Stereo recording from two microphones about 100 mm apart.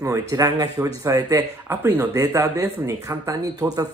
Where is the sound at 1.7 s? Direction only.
25° right (ahead or behind).